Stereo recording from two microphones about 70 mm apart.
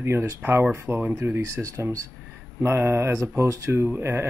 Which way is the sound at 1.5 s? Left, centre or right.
Right.